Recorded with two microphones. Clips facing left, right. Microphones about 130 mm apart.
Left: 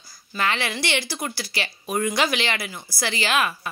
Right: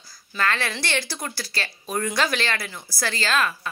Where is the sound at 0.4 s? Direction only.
15° left (ahead or behind).